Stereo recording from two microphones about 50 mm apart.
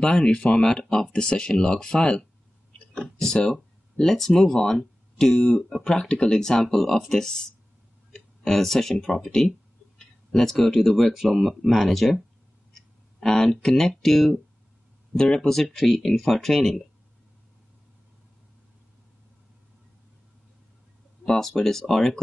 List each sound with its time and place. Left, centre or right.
0.0 s speech: centre
3.0 s a sound: centre
4.0 s speech: centre
13.2 s speech: centre
21.3 s speech: centre